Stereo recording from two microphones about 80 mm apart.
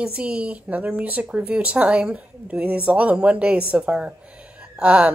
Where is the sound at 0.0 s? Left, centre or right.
Centre.